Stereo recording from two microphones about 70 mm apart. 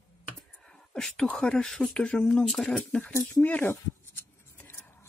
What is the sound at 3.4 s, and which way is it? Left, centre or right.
Speech, centre.